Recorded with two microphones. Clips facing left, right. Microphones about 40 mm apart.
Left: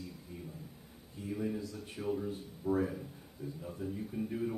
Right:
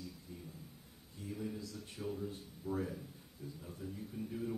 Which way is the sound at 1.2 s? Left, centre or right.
Left.